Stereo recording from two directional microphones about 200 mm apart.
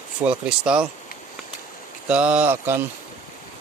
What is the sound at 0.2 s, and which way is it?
Speech, 5° right (ahead or behind).